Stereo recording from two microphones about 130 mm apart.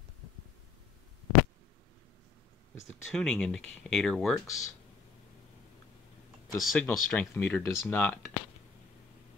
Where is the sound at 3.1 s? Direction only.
5° left (ahead or behind).